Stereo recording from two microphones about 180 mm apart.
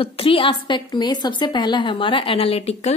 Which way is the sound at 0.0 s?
30° left (ahead or behind).